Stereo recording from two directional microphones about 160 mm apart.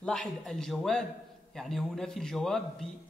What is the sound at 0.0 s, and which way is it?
A man's voice, 5° left (ahead or behind).